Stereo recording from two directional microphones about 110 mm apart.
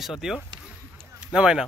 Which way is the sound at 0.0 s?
5° right (ahead or behind).